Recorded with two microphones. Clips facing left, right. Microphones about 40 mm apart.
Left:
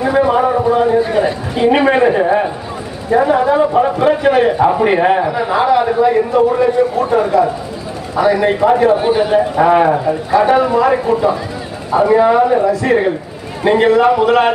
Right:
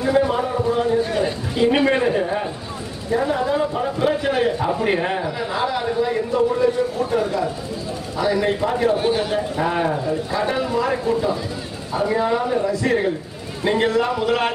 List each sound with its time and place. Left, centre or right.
0.0 s a sound: left
3.1 s a man's voice: left
6.1 s a man's voice: left; by 8.5 s centre
8.5 s a man's voice: left
8.9 s a man's voice: centre